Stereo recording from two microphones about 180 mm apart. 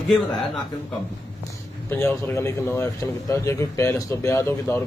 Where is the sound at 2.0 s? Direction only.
15° left (ahead or behind).